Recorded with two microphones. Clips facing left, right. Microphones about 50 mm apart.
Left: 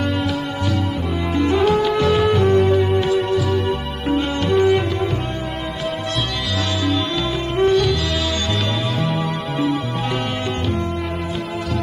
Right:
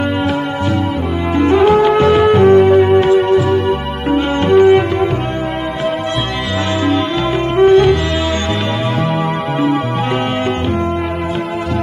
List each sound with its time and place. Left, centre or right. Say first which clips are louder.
1.3 s music: right 7 dB; right
7.5 s music: right 8 dB; right
9.0 s music: right 6 dB; right